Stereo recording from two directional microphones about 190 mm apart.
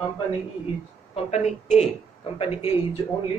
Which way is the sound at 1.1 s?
35° left (ahead or behind).